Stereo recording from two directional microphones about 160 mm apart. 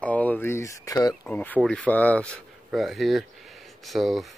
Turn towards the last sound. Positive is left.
turn(degrees=0)  # may be behind; listen again after turning